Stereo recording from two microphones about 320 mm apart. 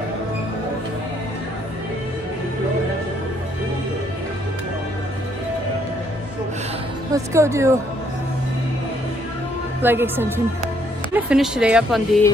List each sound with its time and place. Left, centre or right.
7.1 s speech: centre
9.8 s speech: centre